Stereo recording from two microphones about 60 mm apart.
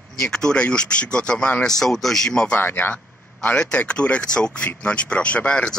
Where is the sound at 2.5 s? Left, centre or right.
Left.